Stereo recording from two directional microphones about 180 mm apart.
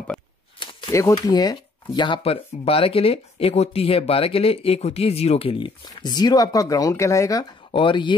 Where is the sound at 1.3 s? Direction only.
20° left (ahead or behind).